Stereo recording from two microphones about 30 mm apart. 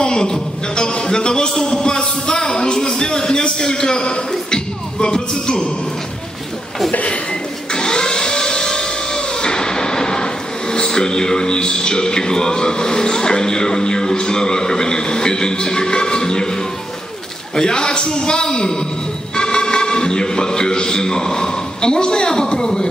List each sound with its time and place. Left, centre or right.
0.0 s a man's voice: left
6.9 s speech: left
7.7 s a sound: left
17.6 s a man's voice: left
19.3 s music: left